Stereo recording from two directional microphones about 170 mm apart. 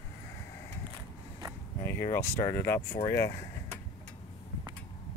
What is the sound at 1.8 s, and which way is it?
Speech, 15° left (ahead or behind).